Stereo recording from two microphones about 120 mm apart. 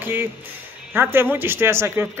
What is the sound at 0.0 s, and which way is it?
A man's voice, 15° right (ahead or behind).